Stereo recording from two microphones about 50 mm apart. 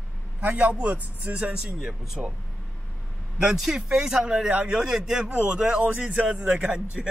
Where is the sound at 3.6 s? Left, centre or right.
Centre.